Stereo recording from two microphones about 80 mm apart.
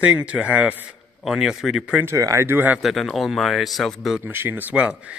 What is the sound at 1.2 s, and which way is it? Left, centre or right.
Speech, centre.